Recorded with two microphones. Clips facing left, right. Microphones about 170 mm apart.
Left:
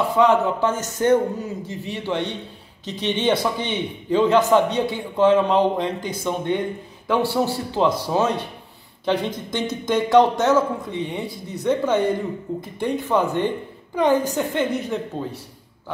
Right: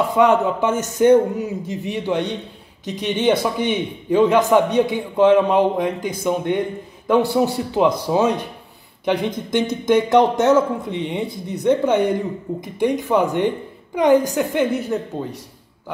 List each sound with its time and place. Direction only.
0.2 s a man's voice: 15° right (ahead or behind)